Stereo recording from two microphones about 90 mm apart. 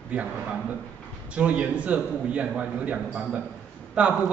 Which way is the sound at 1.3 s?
15° right (ahead or behind).